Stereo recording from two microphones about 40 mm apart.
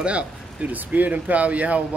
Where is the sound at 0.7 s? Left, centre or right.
Right.